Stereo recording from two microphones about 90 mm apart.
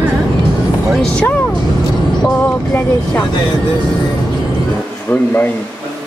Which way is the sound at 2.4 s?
20° left (ahead or behind).